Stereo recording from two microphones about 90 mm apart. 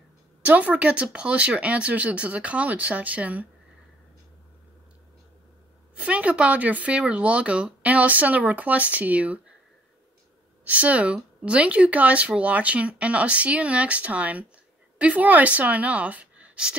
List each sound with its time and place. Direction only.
0.4 s speech: 15° right (ahead or behind)
5.9 s speech: 15° right (ahead or behind)
10.6 s a woman's voice: 15° right (ahead or behind)